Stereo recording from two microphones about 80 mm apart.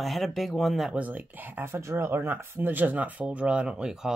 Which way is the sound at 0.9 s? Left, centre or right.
Centre.